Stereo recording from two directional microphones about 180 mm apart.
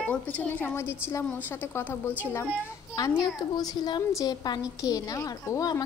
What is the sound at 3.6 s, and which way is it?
A woman's voice, 20° left (ahead or behind).